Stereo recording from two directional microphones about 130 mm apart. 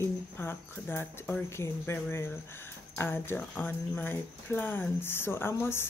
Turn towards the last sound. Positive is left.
turn(degrees=20)  # may be behind; listen again after turning